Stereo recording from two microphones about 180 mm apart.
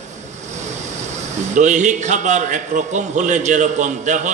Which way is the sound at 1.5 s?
45° right (ahead or behind).